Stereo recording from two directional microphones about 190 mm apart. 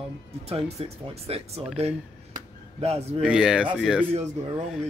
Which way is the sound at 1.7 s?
35° right (ahead or behind).